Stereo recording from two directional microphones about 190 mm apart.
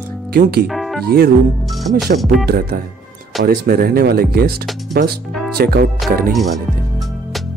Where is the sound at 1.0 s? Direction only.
55° right (ahead or behind).